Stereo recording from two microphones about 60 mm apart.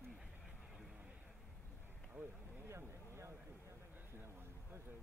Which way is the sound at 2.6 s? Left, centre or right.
Right.